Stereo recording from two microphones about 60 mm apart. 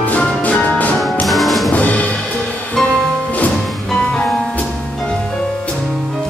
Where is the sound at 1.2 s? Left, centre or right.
Centre.